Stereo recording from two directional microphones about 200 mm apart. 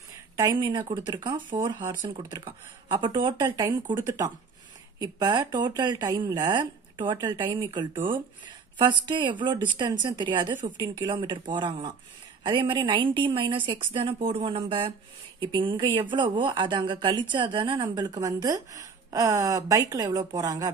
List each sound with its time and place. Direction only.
0.4 s speech: 20° right (ahead or behind)